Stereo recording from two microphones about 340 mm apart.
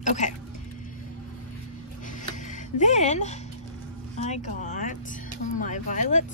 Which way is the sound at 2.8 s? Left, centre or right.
Left.